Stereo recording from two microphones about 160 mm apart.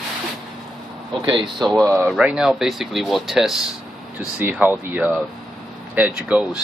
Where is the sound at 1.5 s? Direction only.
Centre (ahead or behind).